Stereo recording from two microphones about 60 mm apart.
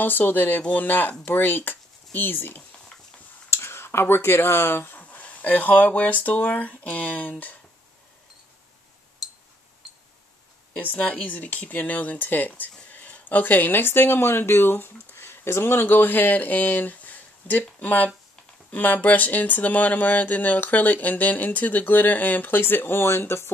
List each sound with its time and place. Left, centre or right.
0.0 s speech: left
3.4 s speech: left
5.0 s speech: left
10.7 s speech: left